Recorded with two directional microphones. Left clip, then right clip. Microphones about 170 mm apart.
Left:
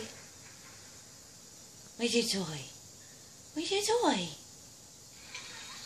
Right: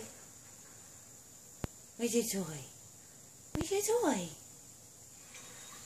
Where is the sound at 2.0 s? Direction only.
25° right (ahead or behind).